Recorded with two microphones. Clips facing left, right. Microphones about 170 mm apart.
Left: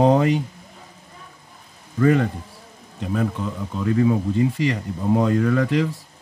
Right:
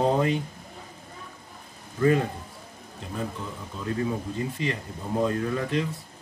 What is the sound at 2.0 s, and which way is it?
Speech, 90° left.